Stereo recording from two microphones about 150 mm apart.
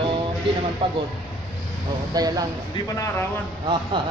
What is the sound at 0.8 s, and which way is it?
Speech, 35° right (ahead or behind).